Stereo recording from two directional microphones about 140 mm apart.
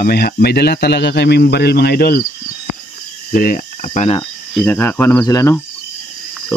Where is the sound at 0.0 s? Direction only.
90° left.